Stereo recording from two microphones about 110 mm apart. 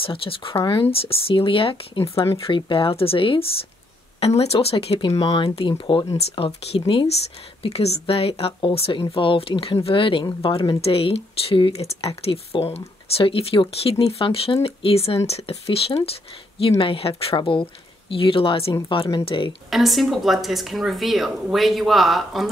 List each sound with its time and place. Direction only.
0.0 s speech: 55° left (ahead or behind)
4.2 s speech: 70° left (ahead or behind)
5.1 s speech: 40° left (ahead or behind)
5.6 s speech: 50° left (ahead or behind)
6.3 s speech: 60° left (ahead or behind)
7.6 s speech: 70° left (ahead or behind); by 19.5 s 50° left (ahead or behind)
19.7 s speech: centre (ahead or behind)